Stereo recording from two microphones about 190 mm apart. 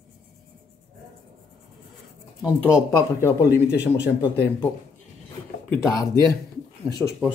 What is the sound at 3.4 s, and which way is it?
Speech, 60° left (ahead or behind).